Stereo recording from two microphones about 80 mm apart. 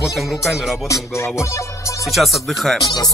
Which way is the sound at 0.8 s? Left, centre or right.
Left.